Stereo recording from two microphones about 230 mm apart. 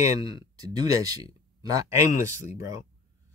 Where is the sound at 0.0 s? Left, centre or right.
Centre.